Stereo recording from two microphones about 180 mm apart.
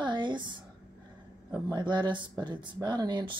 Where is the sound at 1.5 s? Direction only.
25° right (ahead or behind).